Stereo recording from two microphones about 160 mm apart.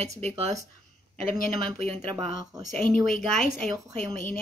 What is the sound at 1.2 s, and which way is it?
Speech, 60° left (ahead or behind).